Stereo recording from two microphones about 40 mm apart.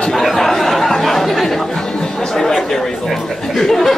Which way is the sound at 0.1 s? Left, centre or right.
Centre.